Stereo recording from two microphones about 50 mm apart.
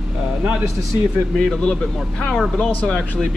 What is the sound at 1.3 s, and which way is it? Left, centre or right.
Speech, centre.